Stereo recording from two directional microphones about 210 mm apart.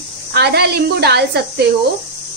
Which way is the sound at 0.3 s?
50° right (ahead or behind).